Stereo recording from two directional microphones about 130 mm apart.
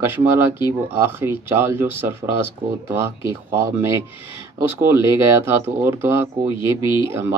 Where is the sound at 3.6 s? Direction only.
20° right (ahead or behind).